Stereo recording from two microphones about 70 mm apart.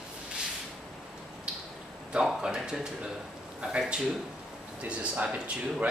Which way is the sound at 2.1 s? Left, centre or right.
Centre.